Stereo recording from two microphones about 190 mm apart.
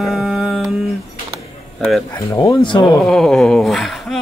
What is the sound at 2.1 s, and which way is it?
Speech, 15° left (ahead or behind).